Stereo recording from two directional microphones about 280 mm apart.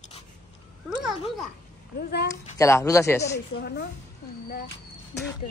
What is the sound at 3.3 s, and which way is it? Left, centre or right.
Speech, left.